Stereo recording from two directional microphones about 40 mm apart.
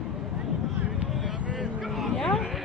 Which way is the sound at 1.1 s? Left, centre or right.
Centre.